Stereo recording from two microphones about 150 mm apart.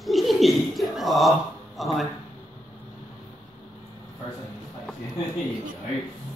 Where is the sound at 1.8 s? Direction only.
Centre (ahead or behind).